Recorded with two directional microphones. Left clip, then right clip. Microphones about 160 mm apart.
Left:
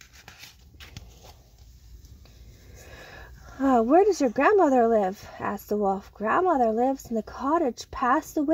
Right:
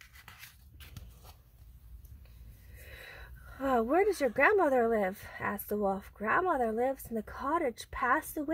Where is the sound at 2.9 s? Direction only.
25° left (ahead or behind).